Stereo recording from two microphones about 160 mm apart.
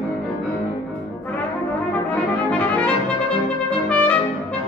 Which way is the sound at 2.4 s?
10° left (ahead or behind).